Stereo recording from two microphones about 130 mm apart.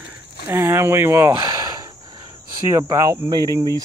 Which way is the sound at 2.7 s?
25° right (ahead or behind).